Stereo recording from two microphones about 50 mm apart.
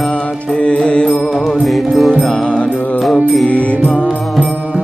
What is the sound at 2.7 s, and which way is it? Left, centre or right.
Music, left.